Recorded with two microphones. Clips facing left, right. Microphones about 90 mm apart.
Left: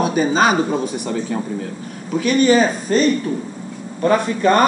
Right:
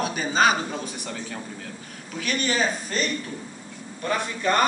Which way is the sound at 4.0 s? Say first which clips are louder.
Left 10 dB; 45° left (ahead or behind).